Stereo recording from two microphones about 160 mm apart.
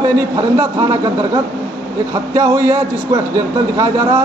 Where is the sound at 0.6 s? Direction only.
20° right (ahead or behind).